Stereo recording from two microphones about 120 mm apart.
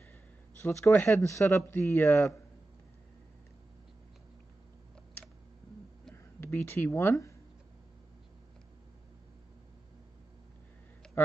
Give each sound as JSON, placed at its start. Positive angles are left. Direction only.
{"t": 0.6, "sound": "a man's voice", "side_deg": 20}
{"t": 6.1, "sound": "speech", "side_deg": 20}